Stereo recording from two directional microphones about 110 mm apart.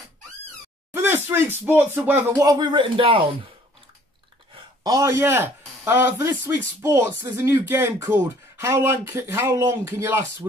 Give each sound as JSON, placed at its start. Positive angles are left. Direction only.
{"t": 0.9, "sound": "speech", "side_deg": -20}
{"t": 2.7, "sound": "speech", "side_deg": -50}
{"t": 4.8, "sound": "speech", "side_deg": -30}